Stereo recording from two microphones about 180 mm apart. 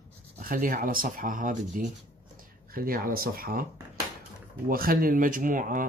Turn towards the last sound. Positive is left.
turn(degrees=-50)  # may be behind; listen again after turning